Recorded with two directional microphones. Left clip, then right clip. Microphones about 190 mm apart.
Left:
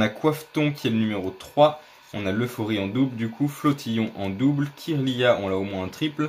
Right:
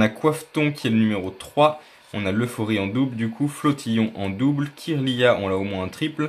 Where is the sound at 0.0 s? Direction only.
20° right (ahead or behind).